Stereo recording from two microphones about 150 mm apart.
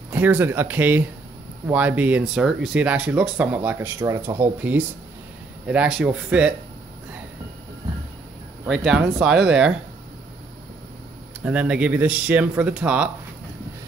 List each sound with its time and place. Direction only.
0.1 s speech: 10° right (ahead or behind)
8.6 s speech: centre (ahead or behind)
11.4 s speech: 10° right (ahead or behind)